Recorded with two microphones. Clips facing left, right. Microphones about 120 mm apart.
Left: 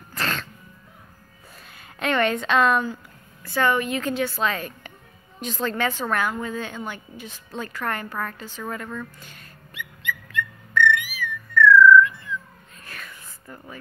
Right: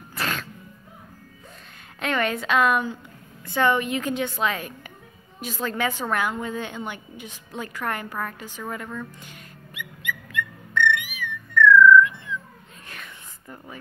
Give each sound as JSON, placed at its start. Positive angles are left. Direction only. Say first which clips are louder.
{"t": 0.1, "sound": "music", "louder": "left 1 dB", "side_deg": -10}
{"t": 2.0, "sound": "a woman's voice", "louder": "left 3 dB", "side_deg": -5}
{"t": 5.4, "sound": "a sound", "louder": "left 1 dB", "side_deg": -10}
{"t": 12.8, "sound": "whispering", "louder": "left 2 dB", "side_deg": -20}